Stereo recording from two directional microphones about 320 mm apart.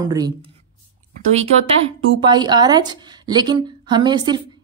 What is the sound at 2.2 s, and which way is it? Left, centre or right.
A woman's voice, centre.